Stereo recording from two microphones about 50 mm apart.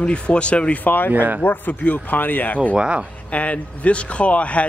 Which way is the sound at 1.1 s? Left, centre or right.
Right.